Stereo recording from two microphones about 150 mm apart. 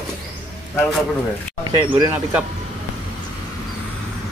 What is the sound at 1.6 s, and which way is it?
Speech, 25° right (ahead or behind).